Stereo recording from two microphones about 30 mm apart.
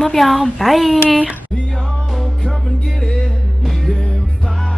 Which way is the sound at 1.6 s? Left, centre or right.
Left.